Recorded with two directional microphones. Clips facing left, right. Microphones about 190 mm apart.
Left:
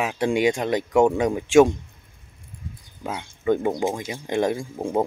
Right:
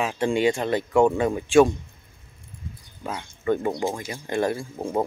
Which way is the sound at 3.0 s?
10° left (ahead or behind).